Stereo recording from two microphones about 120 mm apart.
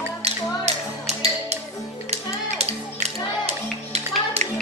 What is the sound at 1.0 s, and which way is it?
Music, 65° right (ahead or behind).